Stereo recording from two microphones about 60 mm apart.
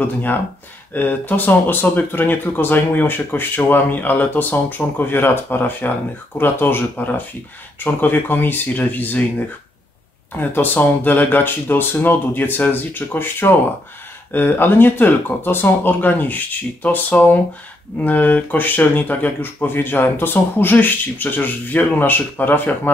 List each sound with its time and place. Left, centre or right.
0.9 s speech: left
10.5 s speech: left